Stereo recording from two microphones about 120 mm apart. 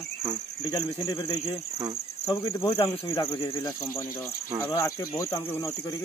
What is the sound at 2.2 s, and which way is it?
Speech, 25° left (ahead or behind).